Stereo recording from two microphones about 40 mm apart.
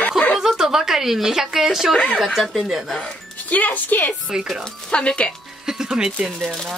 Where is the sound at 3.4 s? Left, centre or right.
Left.